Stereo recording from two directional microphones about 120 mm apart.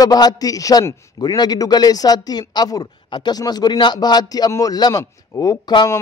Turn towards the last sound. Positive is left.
turn(degrees=35)  # may be behind; listen again after turning